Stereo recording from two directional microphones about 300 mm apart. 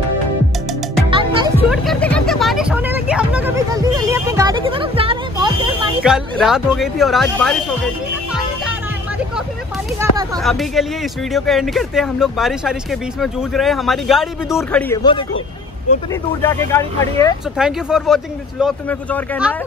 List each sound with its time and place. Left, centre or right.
1.1 s music: centre
1.6 s music: centre
6.0 s speech: centre
9.9 s speech: centre
10.4 s speech: centre
17.6 s speech: centre